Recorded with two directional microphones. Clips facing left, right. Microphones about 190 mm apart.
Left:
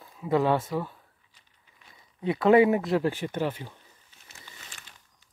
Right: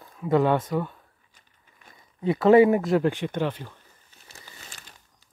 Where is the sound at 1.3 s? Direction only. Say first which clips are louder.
Right 3 dB; 50° right (ahead or behind).